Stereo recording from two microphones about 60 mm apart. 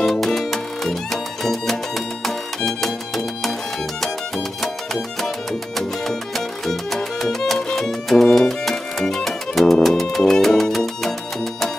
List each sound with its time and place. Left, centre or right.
0.0 s music: centre
4.0 s music: centre